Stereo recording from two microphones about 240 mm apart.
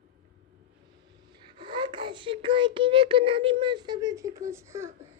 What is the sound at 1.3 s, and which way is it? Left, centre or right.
Speech, centre.